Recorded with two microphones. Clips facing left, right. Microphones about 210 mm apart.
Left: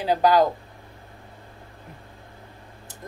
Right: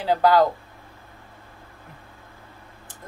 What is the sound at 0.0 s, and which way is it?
Speech, 15° left (ahead or behind).